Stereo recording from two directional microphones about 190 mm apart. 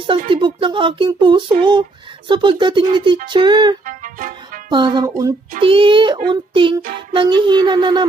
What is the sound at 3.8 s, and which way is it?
Music, 45° right (ahead or behind).